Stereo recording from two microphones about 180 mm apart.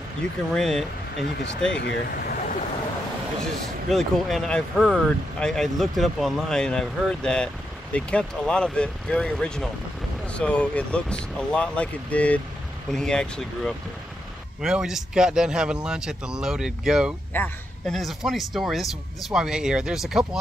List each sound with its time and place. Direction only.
0.6 s speech: centre (ahead or behind)
1.8 s speech: 65° left (ahead or behind); by 2.6 s 50° left (ahead or behind)
3.4 s speech: centre (ahead or behind)